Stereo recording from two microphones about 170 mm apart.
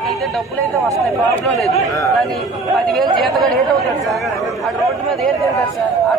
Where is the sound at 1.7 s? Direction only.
20° left (ahead or behind).